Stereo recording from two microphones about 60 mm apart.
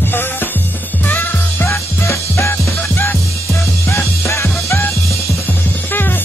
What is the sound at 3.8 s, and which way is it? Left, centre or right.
Music, left.